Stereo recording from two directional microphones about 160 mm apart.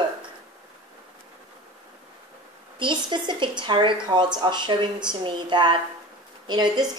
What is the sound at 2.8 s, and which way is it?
A woman's voice, 30° right (ahead or behind).